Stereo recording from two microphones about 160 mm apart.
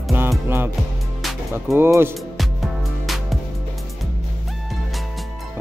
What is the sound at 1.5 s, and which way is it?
Music, 15° right (ahead or behind).